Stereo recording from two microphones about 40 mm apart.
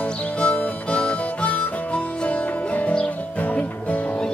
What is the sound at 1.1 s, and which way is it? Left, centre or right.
Harmonica, left.